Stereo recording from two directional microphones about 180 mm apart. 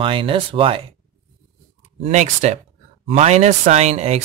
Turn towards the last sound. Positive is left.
turn(degrees=-40)  # may be behind; listen again after turning